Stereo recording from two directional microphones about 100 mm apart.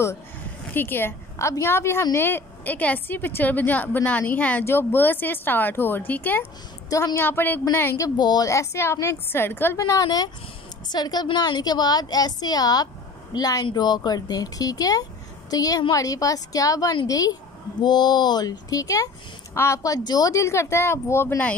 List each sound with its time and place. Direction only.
0.7 s a woman's voice: 20° left (ahead or behind)
6.9 s a woman's voice: 35° left (ahead or behind)
7.2 s speech: 20° left (ahead or behind)
8.0 s speech: 40° left (ahead or behind); by 9.8 s 20° left (ahead or behind)
9.8 s a woman's voice: 40° left (ahead or behind)